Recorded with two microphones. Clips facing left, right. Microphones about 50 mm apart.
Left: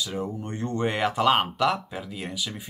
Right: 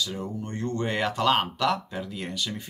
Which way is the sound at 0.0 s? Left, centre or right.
Left.